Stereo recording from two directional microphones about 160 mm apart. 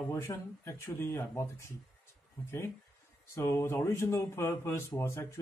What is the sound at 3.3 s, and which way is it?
Mantra, 15° left (ahead or behind).